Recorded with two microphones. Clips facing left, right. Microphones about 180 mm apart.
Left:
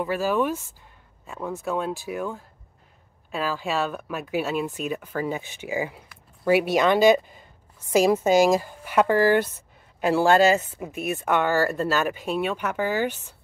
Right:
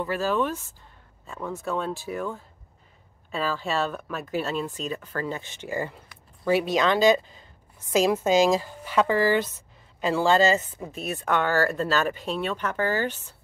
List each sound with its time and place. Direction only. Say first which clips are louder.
0.0 s speech: left 2 dB; 10° left (ahead or behind)
9.1 s speech: left 4 dB; 55° left (ahead or behind)
9.9 s speech: left 3 dB; 10° left (ahead or behind)